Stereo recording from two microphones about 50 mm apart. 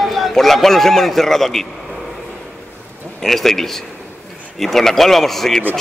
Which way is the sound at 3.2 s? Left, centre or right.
Centre.